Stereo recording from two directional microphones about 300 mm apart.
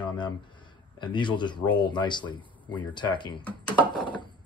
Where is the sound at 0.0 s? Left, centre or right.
Centre.